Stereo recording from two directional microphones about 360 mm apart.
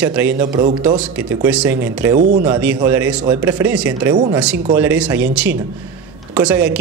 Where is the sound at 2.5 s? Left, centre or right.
Centre.